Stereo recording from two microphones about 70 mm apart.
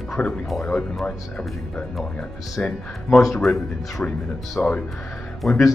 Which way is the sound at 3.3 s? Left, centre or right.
Centre.